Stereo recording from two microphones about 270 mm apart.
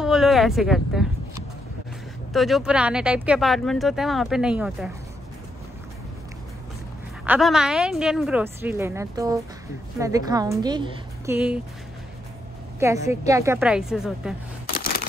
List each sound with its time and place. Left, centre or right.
0.0 s speech: centre
2.3 s speech: centre
7.2 s a woman's voice: centre
12.8 s a woman's voice: centre
14.7 s a sound: left